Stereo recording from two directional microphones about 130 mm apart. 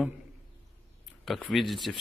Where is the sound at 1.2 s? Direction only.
Centre (ahead or behind).